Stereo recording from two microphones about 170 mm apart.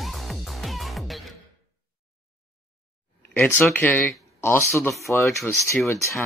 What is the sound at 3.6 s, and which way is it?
Speech, 10° left (ahead or behind).